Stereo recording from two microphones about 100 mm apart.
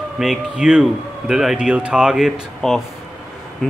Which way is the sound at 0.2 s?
5° right (ahead or behind).